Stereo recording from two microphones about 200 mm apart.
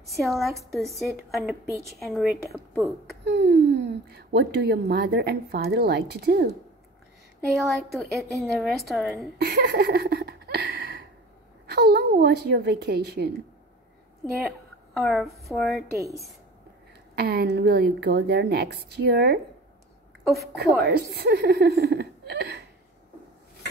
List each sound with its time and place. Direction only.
0.2 s a woman's voice: centre (ahead or behind)
3.3 s speech: 55° right (ahead or behind)
7.5 s a woman's voice: centre (ahead or behind)
8.2 s a woman's voice: 15° right (ahead or behind)
8.5 s a woman's voice: centre (ahead or behind)
9.4 s a sound: 50° right (ahead or behind)
11.6 s speech: 55° right (ahead or behind)
15.0 s a woman's voice: centre (ahead or behind)
17.1 s speech: 50° right (ahead or behind)
20.8 s speech: 50° right (ahead or behind)